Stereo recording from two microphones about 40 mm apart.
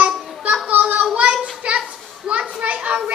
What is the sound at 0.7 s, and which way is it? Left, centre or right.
Child singing, right.